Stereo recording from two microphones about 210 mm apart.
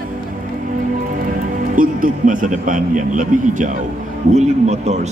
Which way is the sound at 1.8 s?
40° right (ahead or behind).